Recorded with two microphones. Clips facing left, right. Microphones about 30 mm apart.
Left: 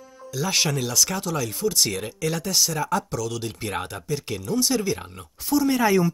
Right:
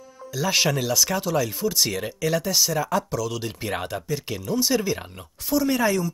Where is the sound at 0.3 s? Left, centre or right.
Centre.